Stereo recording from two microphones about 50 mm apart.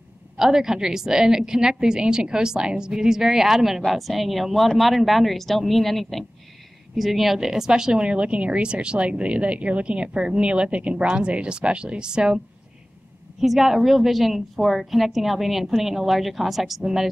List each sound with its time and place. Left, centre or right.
0.4 s a woman's voice: centre
13.4 s a woman's voice: centre